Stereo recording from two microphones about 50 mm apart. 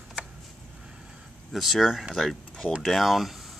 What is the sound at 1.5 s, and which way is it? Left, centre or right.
Speech, centre.